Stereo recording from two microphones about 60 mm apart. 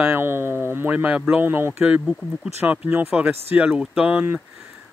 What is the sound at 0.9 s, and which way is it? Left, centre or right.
Speech, right.